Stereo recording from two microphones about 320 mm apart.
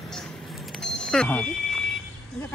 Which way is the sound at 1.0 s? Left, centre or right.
Centre.